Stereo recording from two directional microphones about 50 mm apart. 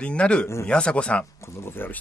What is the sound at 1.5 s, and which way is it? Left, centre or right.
Speech, left.